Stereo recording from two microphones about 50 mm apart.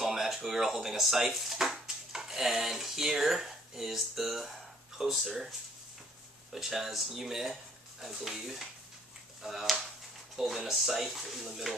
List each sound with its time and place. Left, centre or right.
0.0 s speech: centre
6.5 s speech: centre